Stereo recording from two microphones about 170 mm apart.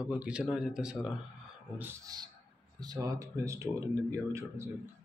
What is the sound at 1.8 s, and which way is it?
Speech, 20° right (ahead or behind).